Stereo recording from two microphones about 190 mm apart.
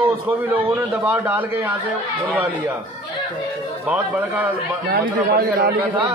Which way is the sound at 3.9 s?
10° right (ahead or behind).